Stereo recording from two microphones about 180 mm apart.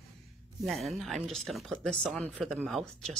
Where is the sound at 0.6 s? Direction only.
Centre (ahead or behind).